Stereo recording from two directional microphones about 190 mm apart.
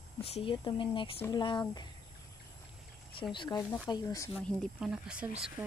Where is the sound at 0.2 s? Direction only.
30° left (ahead or behind).